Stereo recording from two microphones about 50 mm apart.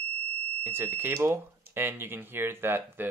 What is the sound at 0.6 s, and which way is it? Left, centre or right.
Speech, right.